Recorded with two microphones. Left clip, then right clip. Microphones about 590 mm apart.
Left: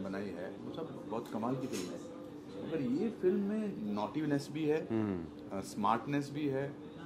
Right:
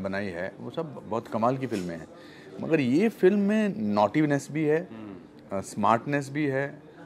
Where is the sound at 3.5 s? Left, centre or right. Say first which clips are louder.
Right 13 dB; right.